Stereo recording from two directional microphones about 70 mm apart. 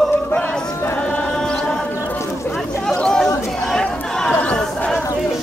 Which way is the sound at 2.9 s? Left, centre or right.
Centre.